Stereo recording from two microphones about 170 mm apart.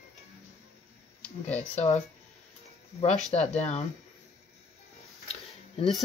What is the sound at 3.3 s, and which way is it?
Speech, 40° left (ahead or behind).